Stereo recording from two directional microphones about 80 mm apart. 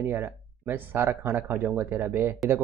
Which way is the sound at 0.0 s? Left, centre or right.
Right.